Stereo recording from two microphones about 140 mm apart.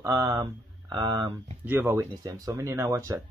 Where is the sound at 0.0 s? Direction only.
20° right (ahead or behind).